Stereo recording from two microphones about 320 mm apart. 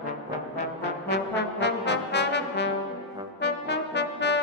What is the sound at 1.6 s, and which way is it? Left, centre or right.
Trombone, left.